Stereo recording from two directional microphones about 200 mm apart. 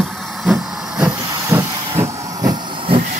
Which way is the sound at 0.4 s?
Centre (ahead or behind).